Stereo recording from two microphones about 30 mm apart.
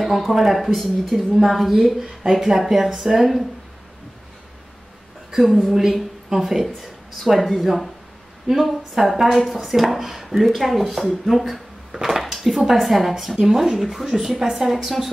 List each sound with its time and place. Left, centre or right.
0.3 s a woman's voice: centre
5.3 s a woman's voice: centre
8.5 s a woman's voice: centre
11.9 s speech: right
12.4 s speech: centre
13.7 s a woman's voice: centre
14.1 s speech: centre